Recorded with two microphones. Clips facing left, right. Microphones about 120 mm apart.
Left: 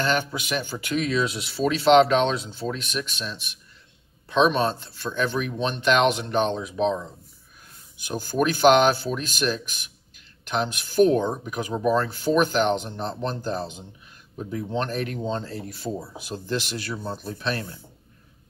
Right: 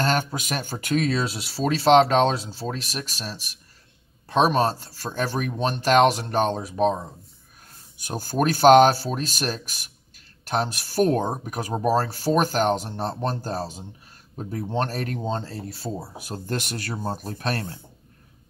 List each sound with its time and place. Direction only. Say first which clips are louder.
0.0 s speech: right 1 dB; 45° right (ahead or behind)
8.1 s speech: even; 40° right (ahead or behind)
16.2 s speech: left 1 dB; 50° right (ahead or behind)